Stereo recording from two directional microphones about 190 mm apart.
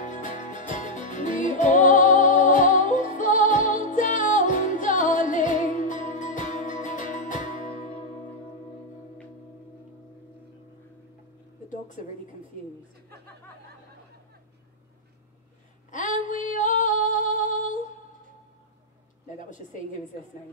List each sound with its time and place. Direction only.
0.0 s music: 40° left (ahead or behind)
15.9 s female singing: 40° left (ahead or behind)